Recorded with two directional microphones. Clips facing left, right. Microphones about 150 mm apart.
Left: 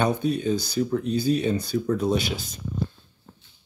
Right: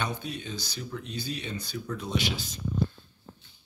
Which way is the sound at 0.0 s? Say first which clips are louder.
Left 11 dB; 45° left (ahead or behind).